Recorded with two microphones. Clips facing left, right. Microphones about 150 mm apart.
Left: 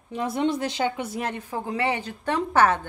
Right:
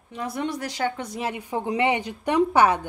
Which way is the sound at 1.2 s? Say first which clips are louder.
Right 5 dB; 10° right (ahead or behind).